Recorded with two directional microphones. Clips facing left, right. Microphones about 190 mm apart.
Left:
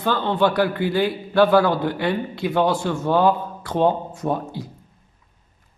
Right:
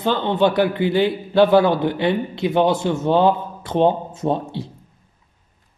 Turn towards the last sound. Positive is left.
turn(degrees=-25)  # may be behind; listen again after turning